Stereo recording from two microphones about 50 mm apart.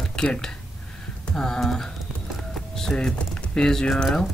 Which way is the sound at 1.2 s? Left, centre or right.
Centre.